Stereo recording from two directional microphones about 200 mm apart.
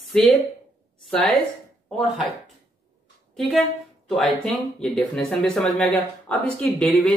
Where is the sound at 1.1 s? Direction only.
Centre (ahead or behind).